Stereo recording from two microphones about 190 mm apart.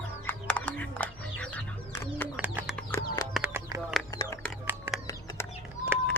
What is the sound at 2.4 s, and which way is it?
Bird, 10° right (ahead or behind).